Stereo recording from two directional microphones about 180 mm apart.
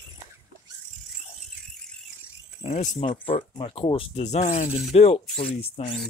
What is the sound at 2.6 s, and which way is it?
Speech, 40° left (ahead or behind).